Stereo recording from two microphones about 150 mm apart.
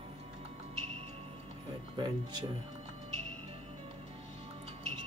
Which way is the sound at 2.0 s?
30° right (ahead or behind).